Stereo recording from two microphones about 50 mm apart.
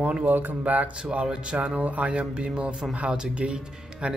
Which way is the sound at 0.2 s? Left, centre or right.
Right.